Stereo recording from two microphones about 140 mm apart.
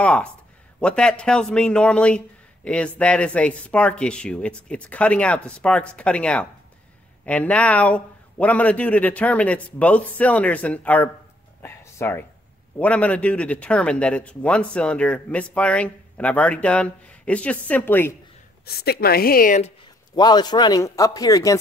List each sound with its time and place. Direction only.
0.0 s a man's voice: 5° left (ahead or behind)
11.6 s a sound: 15° left (ahead or behind)
12.7 s a man's voice: 10° left (ahead or behind)
18.7 s a woman's voice: 90° left
20.2 s speech: 30° left (ahead or behind)